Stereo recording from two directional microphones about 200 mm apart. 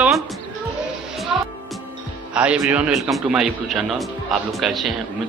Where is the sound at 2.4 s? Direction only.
5° right (ahead or behind).